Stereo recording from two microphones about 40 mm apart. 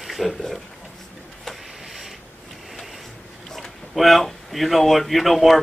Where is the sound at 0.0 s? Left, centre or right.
Centre.